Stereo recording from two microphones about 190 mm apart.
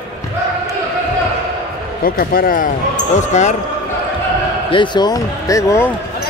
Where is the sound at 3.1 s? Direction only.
40° left (ahead or behind).